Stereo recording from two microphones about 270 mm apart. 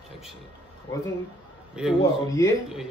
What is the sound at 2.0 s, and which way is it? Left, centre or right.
Speech, centre.